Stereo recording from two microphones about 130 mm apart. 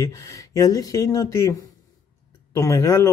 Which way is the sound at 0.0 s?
25° left (ahead or behind).